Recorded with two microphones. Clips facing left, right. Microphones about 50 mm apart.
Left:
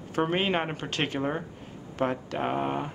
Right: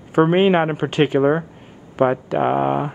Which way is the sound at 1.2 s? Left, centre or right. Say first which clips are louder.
Right 13 dB; right.